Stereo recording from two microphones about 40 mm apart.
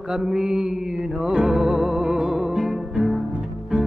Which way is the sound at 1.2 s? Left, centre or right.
Centre.